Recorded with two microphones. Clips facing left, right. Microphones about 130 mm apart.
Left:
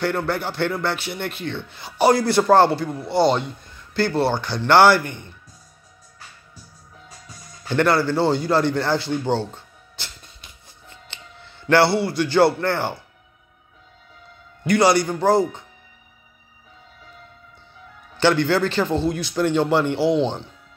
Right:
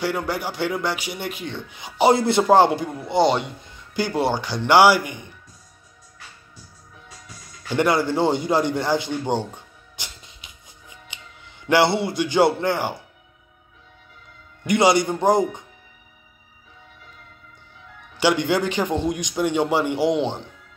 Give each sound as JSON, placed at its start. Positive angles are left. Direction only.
{"t": 0.0, "sound": "speech", "side_deg": -10}
{"t": 7.7, "sound": "a man's voice", "side_deg": -15}
{"t": 14.7, "sound": "speech", "side_deg": -20}
{"t": 18.1, "sound": "speech", "side_deg": -15}